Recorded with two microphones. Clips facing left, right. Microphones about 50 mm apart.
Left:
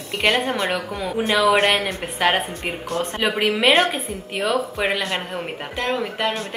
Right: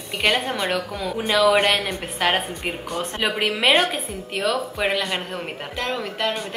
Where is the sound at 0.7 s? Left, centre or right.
Centre.